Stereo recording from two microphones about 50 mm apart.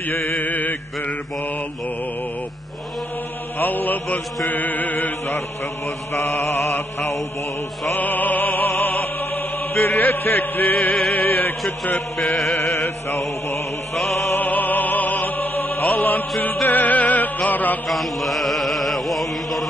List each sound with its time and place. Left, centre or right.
0.4 s mantra: left
3.5 s mantra: left
6.4 s mantra: left
7.9 s music: left
8.8 s chant: left
11.2 s a sound: left
13.9 s music: centre
14.3 s music: left
17.8 s chant: centre